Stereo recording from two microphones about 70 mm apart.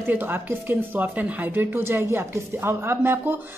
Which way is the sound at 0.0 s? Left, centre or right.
Right.